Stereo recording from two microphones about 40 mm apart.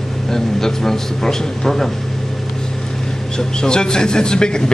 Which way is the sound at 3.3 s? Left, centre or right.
Centre.